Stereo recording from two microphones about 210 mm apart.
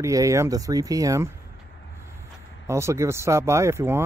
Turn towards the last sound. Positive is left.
turn(degrees=-10)  # may be behind; listen again after turning